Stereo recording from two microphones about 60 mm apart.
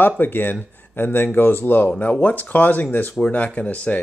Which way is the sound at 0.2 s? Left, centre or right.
Left.